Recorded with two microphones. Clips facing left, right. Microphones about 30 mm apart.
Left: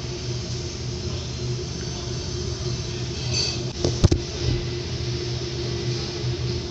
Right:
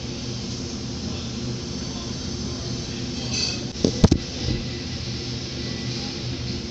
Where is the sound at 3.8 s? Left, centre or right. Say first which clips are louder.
Right 4 dB; right.